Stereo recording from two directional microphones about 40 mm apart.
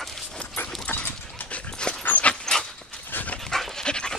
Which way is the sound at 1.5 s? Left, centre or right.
Left.